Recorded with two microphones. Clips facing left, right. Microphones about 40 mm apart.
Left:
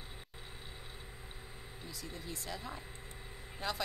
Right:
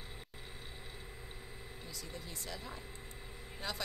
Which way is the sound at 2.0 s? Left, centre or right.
Centre.